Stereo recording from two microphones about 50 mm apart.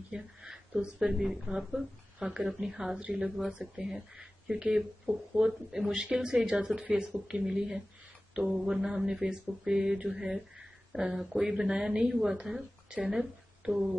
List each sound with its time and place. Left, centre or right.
0.1 s a woman's voice: centre